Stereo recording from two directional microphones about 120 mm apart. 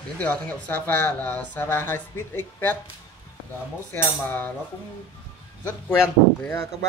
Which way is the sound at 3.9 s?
20° left (ahead or behind).